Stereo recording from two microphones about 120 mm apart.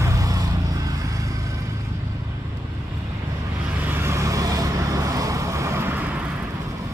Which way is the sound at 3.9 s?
20° right (ahead or behind).